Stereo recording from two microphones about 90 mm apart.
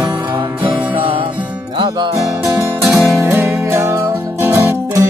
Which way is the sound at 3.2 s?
25° right (ahead or behind).